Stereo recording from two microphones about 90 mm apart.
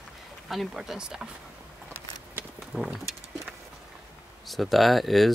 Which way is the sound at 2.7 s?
5° right (ahead or behind).